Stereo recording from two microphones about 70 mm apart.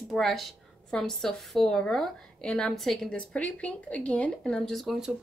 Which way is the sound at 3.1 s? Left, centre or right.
Centre.